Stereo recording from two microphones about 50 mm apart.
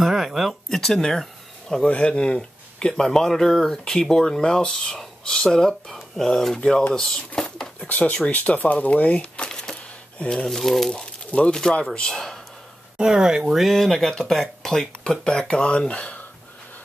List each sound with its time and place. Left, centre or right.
0.0 s a sound: centre
0.7 s speech: centre
1.2 s a sound: centre
1.9 s speech: left
7.3 s patter: centre
7.9 s speech: left
9.4 s a sound: centre
10.3 s speech: centre
12.9 s speech: centre; by 16.2 s left